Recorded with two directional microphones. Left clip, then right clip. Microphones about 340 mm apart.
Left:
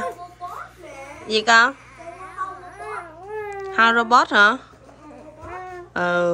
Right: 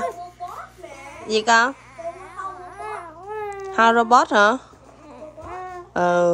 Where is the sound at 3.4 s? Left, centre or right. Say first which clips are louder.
Even; centre.